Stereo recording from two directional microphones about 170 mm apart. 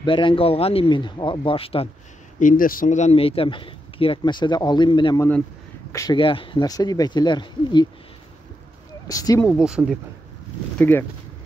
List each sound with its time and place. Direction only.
0.0 s speech: 30° left (ahead or behind)
2.3 s speech: 50° left (ahead or behind); by 5.3 s 25° left (ahead or behind)
5.9 s a sound: 20° left (ahead or behind)
6.1 s speech: 30° left (ahead or behind)
9.0 s speech: 20° left (ahead or behind)
9.4 s speech: centre (ahead or behind)
10.8 s speech: 10° left (ahead or behind)